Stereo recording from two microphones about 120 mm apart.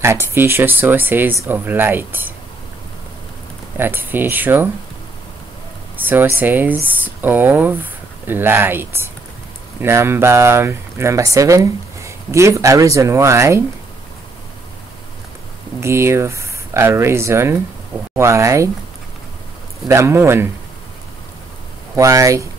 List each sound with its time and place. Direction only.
0.0 s speech: 20° right (ahead or behind)
3.7 s speech: 15° right (ahead or behind)
5.9 s speech: 15° right (ahead or behind)
15.8 s speech: 20° right (ahead or behind)
19.9 s speech: 20° right (ahead or behind)
21.9 s speech: 25° right (ahead or behind)